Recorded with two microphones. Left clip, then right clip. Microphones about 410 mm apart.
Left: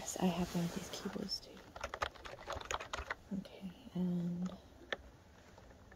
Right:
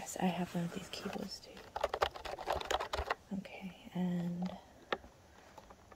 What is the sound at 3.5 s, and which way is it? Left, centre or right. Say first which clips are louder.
Whispering: right 2 dB; centre.